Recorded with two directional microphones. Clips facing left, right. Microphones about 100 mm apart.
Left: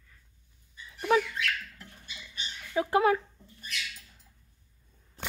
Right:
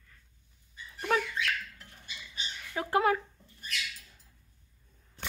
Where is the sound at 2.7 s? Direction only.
20° left (ahead or behind).